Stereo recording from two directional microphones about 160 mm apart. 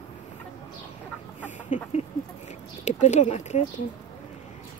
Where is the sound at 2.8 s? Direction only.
45° left (ahead or behind).